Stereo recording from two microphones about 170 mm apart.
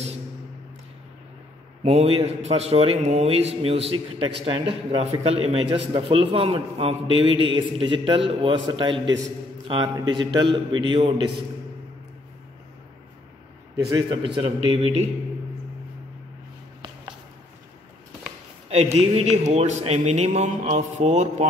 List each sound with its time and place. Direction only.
1.8 s a man's voice: 35° right (ahead or behind)
13.7 s a man's voice: 20° right (ahead or behind); by 15.0 s 35° right (ahead or behind)
18.9 s a man's voice: 40° right (ahead or behind)